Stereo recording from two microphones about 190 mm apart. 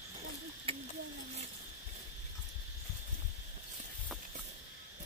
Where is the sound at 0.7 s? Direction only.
30° right (ahead or behind).